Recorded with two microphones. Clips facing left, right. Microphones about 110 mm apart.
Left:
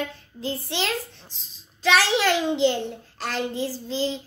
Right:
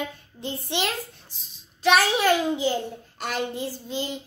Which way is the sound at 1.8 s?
90° left.